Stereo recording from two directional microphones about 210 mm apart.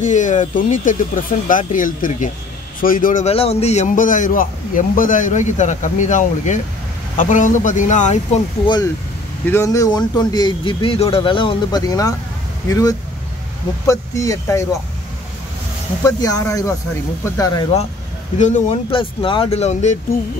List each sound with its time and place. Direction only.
0.0 s a man's voice: 35° left (ahead or behind)
9.5 s speech: 15° left (ahead or behind)
16.1 s speech: 15° left (ahead or behind)
18.4 s a man's voice: 35° left (ahead or behind)